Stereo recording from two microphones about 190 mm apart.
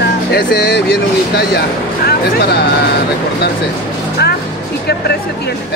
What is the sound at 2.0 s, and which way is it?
Speech, 60° left (ahead or behind).